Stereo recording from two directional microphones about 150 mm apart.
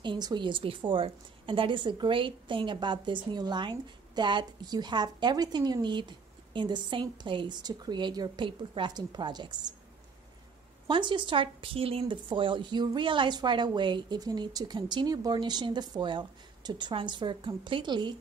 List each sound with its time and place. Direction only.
0.0 s a woman's voice: 30° right (ahead or behind)
10.9 s a woman's voice: 30° right (ahead or behind)